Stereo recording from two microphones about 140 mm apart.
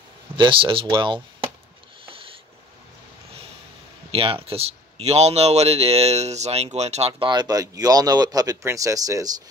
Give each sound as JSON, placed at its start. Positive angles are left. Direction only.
{"t": 0.4, "sound": "speech", "side_deg": -35}
{"t": 2.0, "sound": "a sound", "side_deg": -40}
{"t": 4.1, "sound": "a man's voice", "side_deg": -40}